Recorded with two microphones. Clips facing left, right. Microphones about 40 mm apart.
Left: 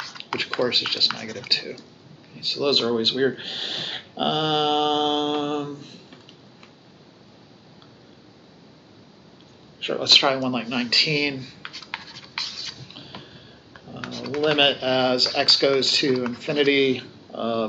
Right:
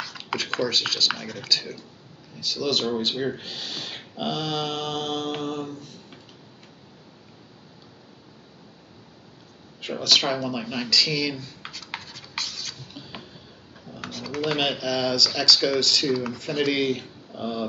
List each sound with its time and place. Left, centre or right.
0.3 s computer keyboard: centre
0.7 s speech: left
1.1 s speech: centre
1.5 s speech: left
9.8 s speech: left
10.6 s speech: centre
11.6 s a sound: centre
14.0 s speech: centre
14.6 s speech: left